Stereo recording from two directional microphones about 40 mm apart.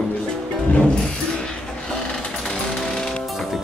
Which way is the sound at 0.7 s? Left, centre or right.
Left.